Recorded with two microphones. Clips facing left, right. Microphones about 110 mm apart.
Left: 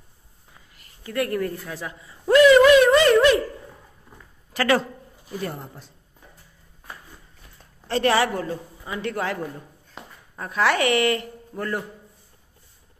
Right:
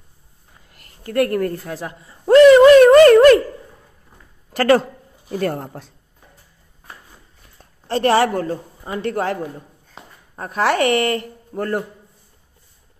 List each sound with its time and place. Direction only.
0.7 s a woman's voice: 55° right (ahead or behind)
2.3 s a sound: 35° right (ahead or behind)
2.8 s a sound: 50° right (ahead or behind)
4.6 s speech: 45° right (ahead or behind)
5.3 s speech: 65° right (ahead or behind)
7.9 s a woman's voice: 40° right (ahead or behind)